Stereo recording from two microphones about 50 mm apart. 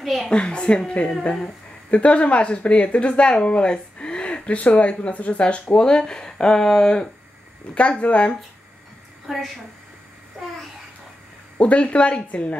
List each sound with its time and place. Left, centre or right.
0.0 s a woman's voice: centre
0.3 s speech: centre
9.3 s a woman's voice: centre
11.6 s speech: left